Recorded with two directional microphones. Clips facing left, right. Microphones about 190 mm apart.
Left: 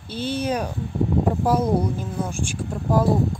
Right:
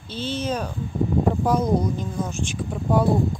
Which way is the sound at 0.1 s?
10° left (ahead or behind).